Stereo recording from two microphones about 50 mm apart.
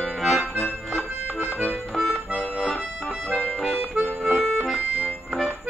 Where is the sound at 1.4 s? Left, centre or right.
Left.